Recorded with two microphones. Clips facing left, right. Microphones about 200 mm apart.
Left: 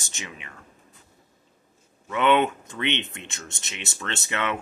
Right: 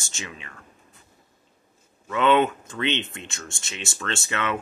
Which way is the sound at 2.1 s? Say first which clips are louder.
Right 1 dB; 20° left (ahead or behind).